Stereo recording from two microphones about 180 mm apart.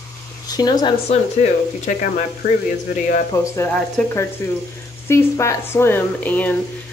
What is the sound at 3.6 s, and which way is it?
Speech, 5° left (ahead or behind).